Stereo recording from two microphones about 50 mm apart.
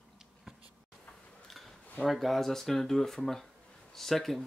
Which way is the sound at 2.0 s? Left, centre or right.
Centre.